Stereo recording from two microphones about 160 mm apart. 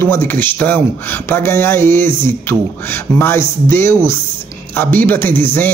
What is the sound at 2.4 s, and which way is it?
Speech, 15° left (ahead or behind).